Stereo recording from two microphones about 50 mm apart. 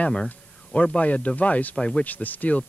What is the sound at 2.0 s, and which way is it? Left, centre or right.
Speech, left.